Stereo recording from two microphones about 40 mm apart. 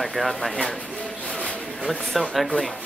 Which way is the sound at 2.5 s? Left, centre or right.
Centre.